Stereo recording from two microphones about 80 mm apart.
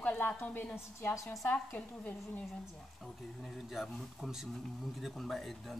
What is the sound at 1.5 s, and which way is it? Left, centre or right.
Speech, left.